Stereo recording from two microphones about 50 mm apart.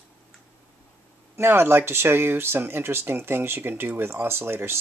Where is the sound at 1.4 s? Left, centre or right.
Right.